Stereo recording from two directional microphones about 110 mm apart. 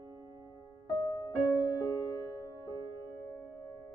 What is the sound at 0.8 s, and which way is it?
Music, 40° left (ahead or behind).